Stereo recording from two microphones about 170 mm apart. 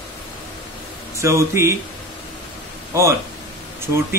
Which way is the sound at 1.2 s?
15° right (ahead or behind).